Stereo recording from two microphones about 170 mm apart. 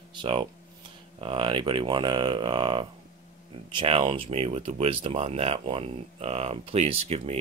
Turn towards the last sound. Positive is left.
turn(degrees=-35)  # may be behind; listen again after turning